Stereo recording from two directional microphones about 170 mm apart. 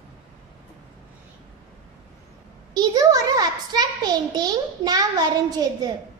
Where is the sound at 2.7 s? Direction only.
20° right (ahead or behind).